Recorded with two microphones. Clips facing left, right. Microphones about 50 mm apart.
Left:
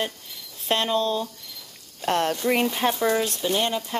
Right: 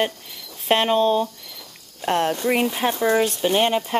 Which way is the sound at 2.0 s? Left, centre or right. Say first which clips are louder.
Right 2 dB; centre.